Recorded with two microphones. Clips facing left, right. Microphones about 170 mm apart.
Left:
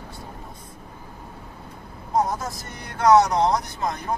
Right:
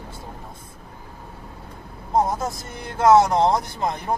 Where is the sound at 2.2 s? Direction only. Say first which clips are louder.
Right 3 dB; 25° right (ahead or behind).